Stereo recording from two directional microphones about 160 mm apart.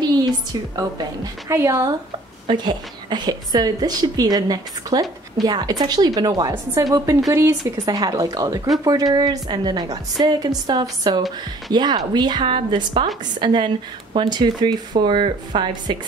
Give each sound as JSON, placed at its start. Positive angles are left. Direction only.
{"t": 0.0, "sound": "a woman's voice", "side_deg": -25}